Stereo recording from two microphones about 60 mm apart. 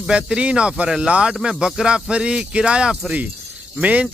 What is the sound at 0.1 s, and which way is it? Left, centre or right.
Speech, centre.